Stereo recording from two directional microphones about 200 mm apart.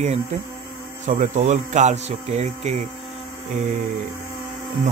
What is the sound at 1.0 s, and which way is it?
Speech, 35° right (ahead or behind).